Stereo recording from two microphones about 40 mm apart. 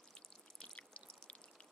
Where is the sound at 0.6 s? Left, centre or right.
Left.